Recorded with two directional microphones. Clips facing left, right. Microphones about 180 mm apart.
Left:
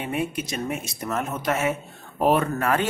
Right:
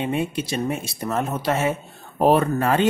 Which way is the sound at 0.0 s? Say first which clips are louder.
Right 3 dB; 25° right (ahead or behind).